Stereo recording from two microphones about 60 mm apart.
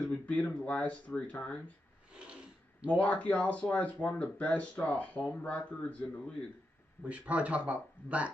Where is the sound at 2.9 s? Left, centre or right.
Left.